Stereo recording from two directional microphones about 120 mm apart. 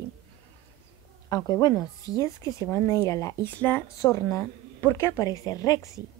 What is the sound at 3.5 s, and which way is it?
Speech, 15° left (ahead or behind).